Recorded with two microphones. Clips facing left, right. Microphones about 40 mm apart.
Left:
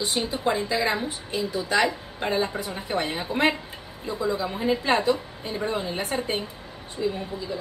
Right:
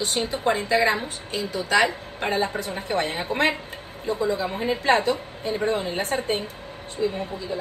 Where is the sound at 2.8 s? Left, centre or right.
Right.